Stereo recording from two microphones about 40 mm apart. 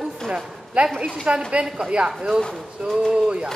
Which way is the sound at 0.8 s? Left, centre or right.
Right.